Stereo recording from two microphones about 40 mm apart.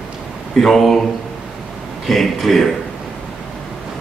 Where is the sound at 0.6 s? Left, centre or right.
Centre.